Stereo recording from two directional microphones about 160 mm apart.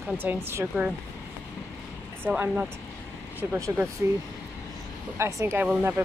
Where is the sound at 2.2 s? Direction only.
10° right (ahead or behind).